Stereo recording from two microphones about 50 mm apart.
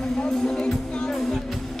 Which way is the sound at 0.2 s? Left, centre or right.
Centre.